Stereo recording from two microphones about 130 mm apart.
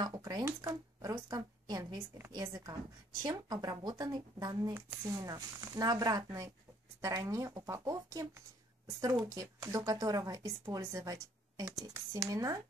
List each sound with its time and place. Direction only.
0.0 s shuffling cards: 30° right (ahead or behind)
0.5 s a woman's voice: 20° right (ahead or behind)